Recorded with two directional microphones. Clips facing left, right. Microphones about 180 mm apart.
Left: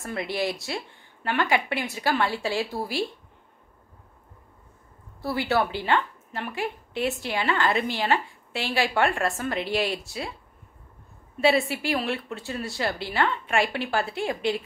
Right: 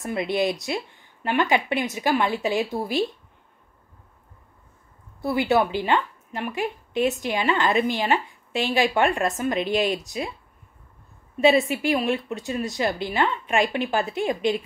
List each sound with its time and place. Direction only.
0.0 s a woman's voice: 20° right (ahead or behind)
5.2 s a woman's voice: 20° right (ahead or behind)
11.4 s a woman's voice: 20° right (ahead or behind)